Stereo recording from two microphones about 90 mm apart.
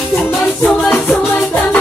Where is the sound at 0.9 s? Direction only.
20° left (ahead or behind).